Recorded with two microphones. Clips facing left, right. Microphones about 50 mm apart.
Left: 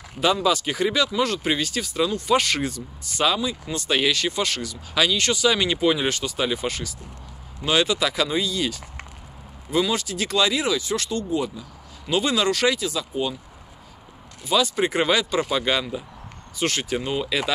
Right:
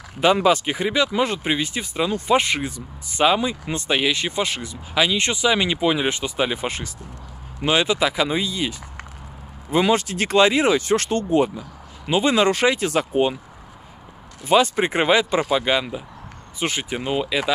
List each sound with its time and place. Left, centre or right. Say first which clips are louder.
0.2 s speech: right 4 dB; right
0.7 s speech: right 1 dB; right
3.9 s speech: even; centre
9.7 s speech: right 4 dB; right
12.1 s speech: right 4 dB; right
12.8 s speech: right 6 dB; right
14.4 s speech: right 4 dB; right; by 17.5 s centre